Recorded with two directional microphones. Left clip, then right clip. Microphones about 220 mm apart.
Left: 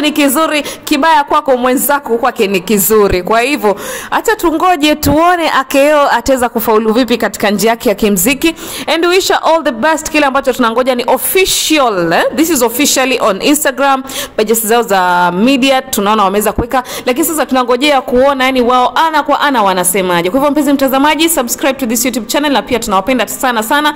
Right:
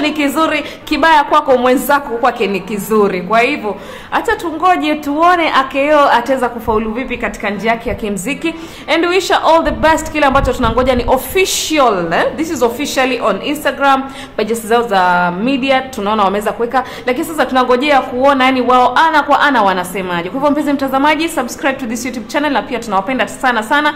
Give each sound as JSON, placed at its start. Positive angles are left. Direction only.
{"t": 0.0, "sound": "a woman's voice", "side_deg": 40}
{"t": 16.0, "sound": "a woman's voice", "side_deg": 30}